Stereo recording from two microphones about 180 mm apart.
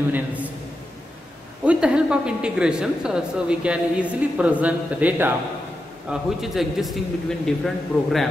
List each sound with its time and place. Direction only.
0.1 s a man's voice: 10° right (ahead or behind)
1.6 s a woman's voice: 5° right (ahead or behind)